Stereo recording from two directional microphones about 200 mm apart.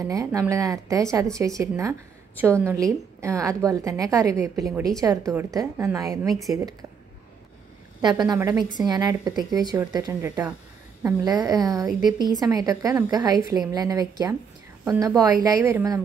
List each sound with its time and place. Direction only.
0.0 s a woman's voice: 15° right (ahead or behind)
8.0 s a woman's voice: 20° right (ahead or behind)